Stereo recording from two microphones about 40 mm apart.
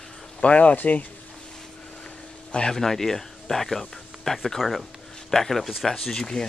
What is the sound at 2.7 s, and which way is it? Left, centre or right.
Speech, centre.